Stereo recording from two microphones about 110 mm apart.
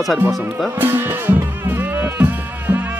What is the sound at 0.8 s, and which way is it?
Music, 20° right (ahead or behind).